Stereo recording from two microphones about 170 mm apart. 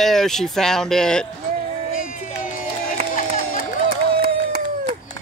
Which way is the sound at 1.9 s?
50° left (ahead or behind).